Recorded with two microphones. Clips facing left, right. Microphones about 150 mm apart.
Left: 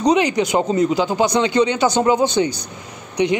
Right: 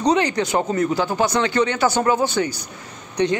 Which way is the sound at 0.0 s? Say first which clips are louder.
Left 3 dB; 15° left (ahead or behind).